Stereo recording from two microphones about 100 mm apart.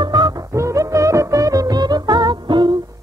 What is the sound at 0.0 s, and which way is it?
Music, 45° right (ahead or behind).